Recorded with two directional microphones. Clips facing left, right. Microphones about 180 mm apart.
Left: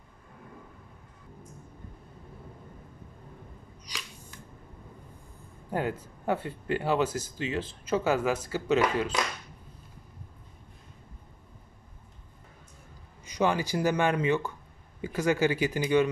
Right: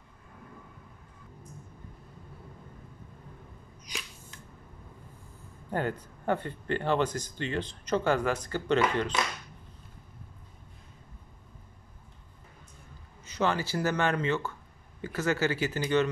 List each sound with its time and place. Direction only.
5.7 s speech: 5° left (ahead or behind)
13.2 s speech: 15° left (ahead or behind)